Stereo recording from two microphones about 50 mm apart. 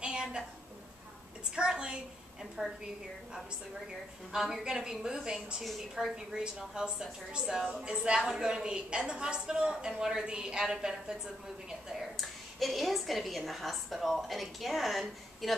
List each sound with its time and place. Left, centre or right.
0.0 s a sound: centre
1.5 s a woman's voice: centre
5.7 s a woman's voice: centre
6.1 s a woman's voice: centre
11.9 s a woman's voice: centre